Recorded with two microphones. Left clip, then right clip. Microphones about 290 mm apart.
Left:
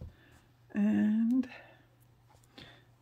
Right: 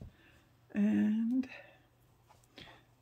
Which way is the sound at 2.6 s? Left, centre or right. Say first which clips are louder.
Left 1 dB; centre.